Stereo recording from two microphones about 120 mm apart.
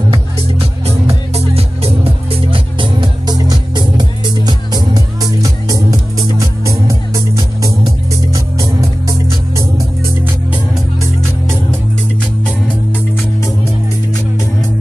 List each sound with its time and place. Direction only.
0.6 s music: 55° right (ahead or behind); by 7.7 s 30° right (ahead or behind)